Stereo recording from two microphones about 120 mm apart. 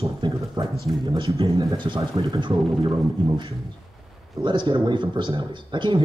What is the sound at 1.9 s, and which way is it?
Speech, 25° right (ahead or behind).